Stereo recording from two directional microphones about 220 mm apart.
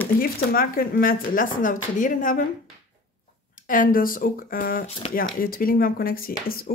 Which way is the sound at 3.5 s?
40° left (ahead or behind).